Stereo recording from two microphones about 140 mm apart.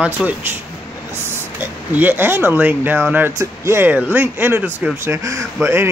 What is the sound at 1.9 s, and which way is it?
Speech, 15° right (ahead or behind).